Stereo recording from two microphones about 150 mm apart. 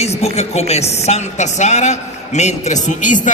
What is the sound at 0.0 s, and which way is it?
A woman's voice, 45° left (ahead or behind).